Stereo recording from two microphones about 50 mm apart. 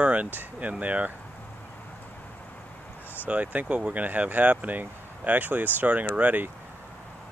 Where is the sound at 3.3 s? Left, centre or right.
Right.